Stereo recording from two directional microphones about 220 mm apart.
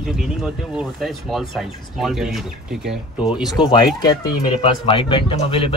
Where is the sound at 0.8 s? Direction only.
Centre (ahead or behind).